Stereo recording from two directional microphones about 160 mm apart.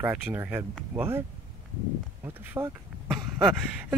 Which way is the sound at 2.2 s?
15° right (ahead or behind).